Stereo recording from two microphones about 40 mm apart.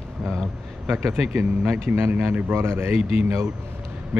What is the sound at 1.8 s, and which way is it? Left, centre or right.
Speech, right.